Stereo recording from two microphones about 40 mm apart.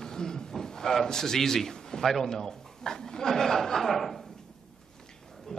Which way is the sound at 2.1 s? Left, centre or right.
Centre.